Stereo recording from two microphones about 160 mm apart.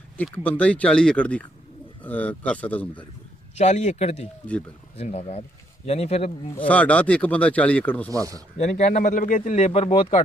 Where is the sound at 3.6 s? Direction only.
45° left (ahead or behind).